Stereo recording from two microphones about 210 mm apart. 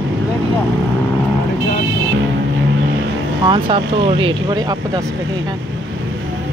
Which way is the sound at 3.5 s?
25° right (ahead or behind).